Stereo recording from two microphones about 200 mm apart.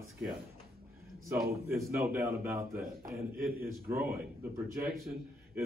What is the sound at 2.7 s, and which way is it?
Speech, 50° right (ahead or behind).